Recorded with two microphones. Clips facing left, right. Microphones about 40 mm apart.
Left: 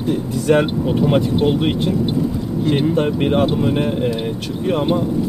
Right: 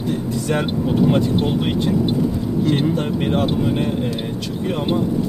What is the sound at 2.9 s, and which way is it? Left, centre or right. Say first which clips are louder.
Speech: left 3 dB; left.